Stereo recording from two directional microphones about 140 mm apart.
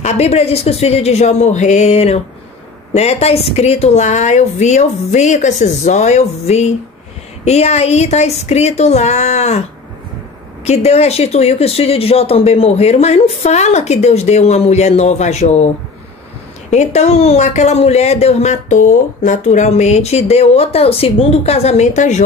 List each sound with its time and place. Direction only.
0.0 s speech: 50° left (ahead or behind)
10.6 s speech: 50° left (ahead or behind)
16.7 s speech: 55° left (ahead or behind)